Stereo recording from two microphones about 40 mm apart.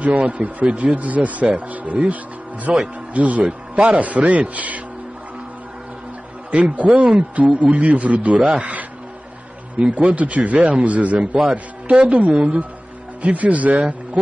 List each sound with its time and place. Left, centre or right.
0.0 s a man's voice: right
2.7 s speech: right
3.1 s a man's voice: right
6.5 s a man's voice: right
13.2 s a man's voice: right